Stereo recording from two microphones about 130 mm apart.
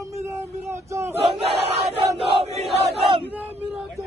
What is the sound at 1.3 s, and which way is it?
Battle cry, 50° right (ahead or behind).